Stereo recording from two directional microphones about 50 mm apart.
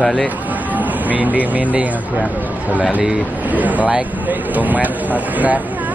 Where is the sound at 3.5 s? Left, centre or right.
Right.